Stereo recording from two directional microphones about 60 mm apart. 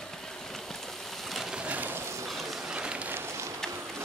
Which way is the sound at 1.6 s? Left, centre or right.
Right.